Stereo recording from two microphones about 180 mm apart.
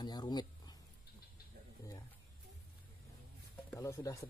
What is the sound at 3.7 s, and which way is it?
Music, 15° left (ahead or behind).